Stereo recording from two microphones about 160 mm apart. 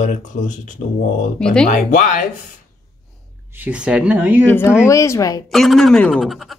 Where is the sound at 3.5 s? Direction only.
10° right (ahead or behind).